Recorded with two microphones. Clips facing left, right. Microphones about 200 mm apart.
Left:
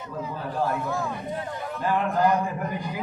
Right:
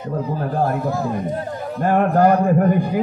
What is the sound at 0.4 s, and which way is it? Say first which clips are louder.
Speech: right 5 dB; 50° right (ahead or behind).